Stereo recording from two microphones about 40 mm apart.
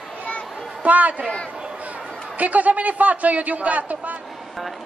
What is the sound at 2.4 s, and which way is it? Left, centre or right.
Speech, right.